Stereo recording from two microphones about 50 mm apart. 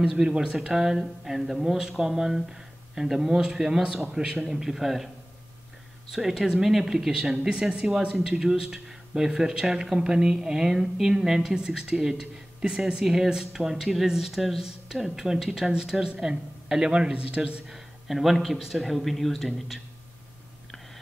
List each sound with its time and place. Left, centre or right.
0.0 s speech: centre
0.6 s a man's voice: centre
6.1 s speech: centre
18.0 s a man's voice: centre